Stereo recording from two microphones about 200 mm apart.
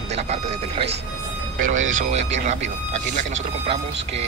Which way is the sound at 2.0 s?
35° right (ahead or behind).